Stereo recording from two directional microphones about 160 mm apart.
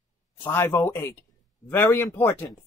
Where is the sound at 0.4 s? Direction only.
15° left (ahead or behind).